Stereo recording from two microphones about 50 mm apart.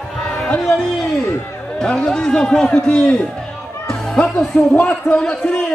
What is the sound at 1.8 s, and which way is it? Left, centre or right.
A man's voice, centre.